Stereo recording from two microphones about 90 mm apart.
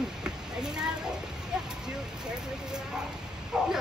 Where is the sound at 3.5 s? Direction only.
5° right (ahead or behind).